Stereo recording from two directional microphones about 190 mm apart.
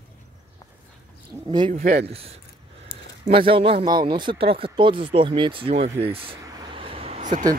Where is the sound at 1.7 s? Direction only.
50° right (ahead or behind).